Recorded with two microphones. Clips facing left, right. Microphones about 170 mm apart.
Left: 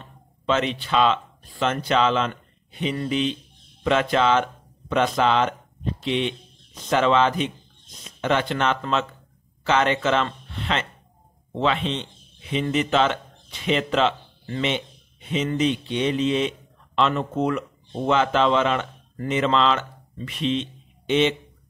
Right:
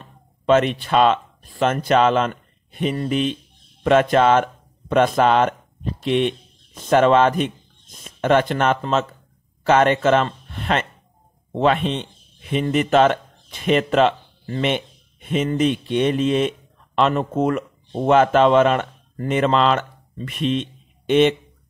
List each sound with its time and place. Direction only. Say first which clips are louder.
0.0 s speech: right 5 dB; 50° right (ahead or behind)